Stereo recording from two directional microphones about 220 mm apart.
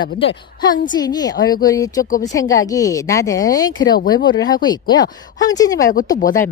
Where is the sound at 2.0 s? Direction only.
35° left (ahead or behind).